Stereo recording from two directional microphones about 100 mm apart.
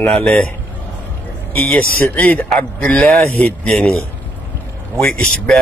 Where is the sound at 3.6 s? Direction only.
5° left (ahead or behind).